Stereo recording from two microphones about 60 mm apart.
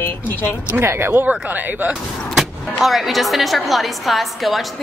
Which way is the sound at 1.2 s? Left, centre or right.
Right.